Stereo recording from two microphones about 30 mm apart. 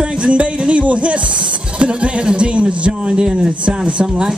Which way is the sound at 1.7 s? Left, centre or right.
Right.